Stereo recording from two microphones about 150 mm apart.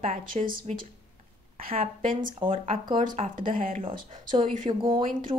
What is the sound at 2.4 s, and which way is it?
Speech, 35° right (ahead or behind).